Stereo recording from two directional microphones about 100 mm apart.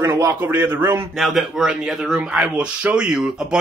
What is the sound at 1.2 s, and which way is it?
A man's voice, 5° right (ahead or behind).